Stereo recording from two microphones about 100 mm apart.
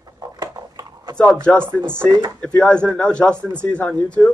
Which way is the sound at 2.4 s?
10° left (ahead or behind).